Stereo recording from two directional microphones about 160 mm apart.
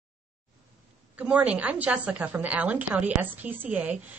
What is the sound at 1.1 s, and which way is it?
A woman's voice, 10° right (ahead or behind).